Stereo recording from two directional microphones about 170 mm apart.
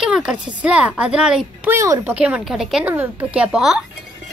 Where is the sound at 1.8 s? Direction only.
15° right (ahead or behind).